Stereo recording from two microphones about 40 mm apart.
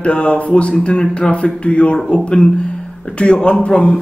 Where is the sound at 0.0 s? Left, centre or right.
Left.